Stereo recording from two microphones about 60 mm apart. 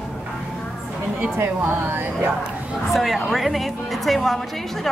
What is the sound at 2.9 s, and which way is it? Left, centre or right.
A woman's voice, centre.